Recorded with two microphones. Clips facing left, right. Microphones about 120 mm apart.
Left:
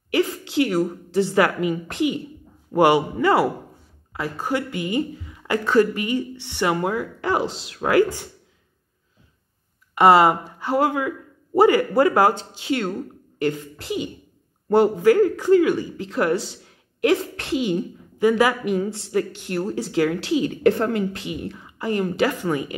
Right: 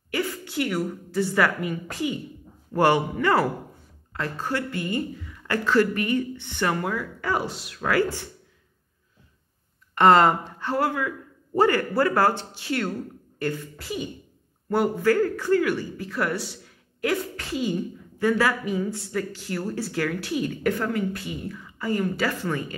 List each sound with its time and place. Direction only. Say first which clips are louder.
0.3 s speech: left 6 dB; 30° left (ahead or behind)
3.2 s speech: left 3 dB; 25° left (ahead or behind)
4.1 s speech: left 3 dB; 10° left (ahead or behind)
9.9 s speech: left 2 dB; 10° left (ahead or behind)
17.7 s a woman's voice: left 4 dB; 20° left (ahead or behind)
21.5 s a sound: left 2 dB; 20° left (ahead or behind)
22.0 s speech: left 4 dB; 20° left (ahead or behind)